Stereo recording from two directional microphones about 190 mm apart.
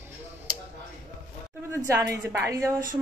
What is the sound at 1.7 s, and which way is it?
A woman's voice, 15° right (ahead or behind).